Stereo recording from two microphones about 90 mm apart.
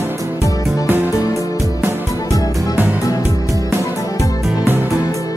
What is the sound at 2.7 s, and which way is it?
Music, 20° right (ahead or behind).